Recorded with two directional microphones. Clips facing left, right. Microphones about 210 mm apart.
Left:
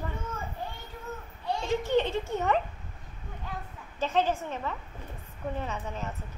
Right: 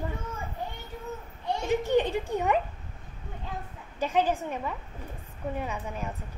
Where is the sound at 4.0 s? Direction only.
15° right (ahead or behind).